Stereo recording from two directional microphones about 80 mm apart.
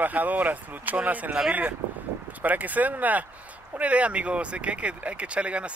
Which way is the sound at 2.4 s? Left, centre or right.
Centre.